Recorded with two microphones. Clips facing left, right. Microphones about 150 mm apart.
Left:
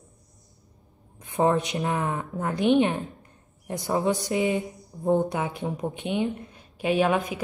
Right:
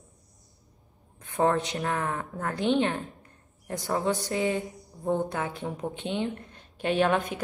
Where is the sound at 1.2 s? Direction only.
15° left (ahead or behind).